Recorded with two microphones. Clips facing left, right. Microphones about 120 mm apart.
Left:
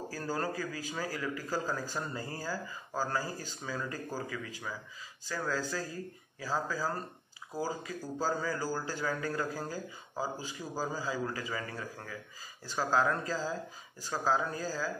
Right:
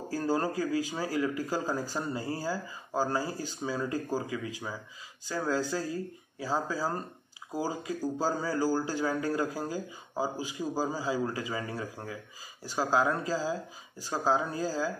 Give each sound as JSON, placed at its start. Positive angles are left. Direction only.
{"t": 0.1, "sound": "speech", "side_deg": -20}